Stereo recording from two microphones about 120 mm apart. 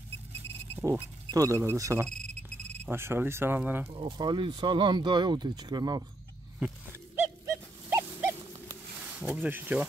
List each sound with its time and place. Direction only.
0.7 s speech: 20° right (ahead or behind)
3.9 s speech: 35° right (ahead or behind)
7.9 s wild animals: 20° right (ahead or behind)
9.0 s speech: 10° right (ahead or behind)